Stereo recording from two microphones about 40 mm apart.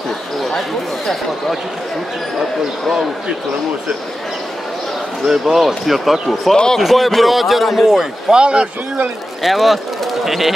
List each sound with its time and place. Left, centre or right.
0.5 s speech: centre
5.2 s a man's voice: centre
6.5 s speech: centre
6.8 s a man's voice: centre
8.4 s speech: right
9.4 s a man's voice: centre